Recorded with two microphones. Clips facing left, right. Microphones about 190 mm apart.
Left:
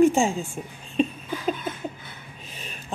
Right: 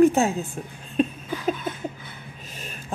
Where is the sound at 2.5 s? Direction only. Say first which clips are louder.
Right 1 dB; 45° right (ahead or behind).